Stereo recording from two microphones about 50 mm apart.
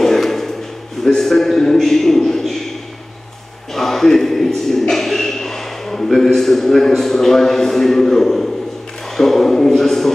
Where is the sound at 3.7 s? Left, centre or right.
Centre.